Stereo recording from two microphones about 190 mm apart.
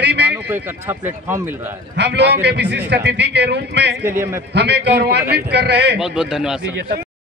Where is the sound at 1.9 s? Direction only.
65° right (ahead or behind).